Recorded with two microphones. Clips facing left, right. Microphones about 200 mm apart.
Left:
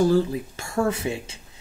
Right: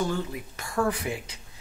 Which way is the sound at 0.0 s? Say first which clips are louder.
Left 9 dB; 30° left (ahead or behind).